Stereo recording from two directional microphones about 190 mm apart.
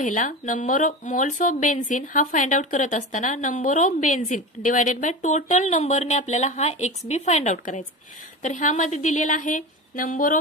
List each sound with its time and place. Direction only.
0.0 s a woman's voice: 45° left (ahead or behind)